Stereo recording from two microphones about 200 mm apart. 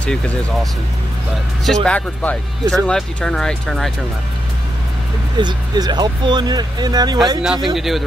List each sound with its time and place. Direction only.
0.0 s speech: 5° left (ahead or behind)
1.7 s speech: 5° left (ahead or behind)
5.4 s speech: 20° right (ahead or behind)
7.4 s speech: centre (ahead or behind)